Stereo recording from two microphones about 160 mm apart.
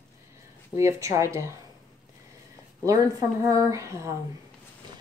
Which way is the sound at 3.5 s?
20° right (ahead or behind).